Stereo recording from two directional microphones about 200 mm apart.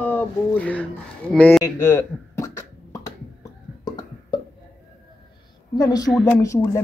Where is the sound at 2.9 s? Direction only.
20° left (ahead or behind).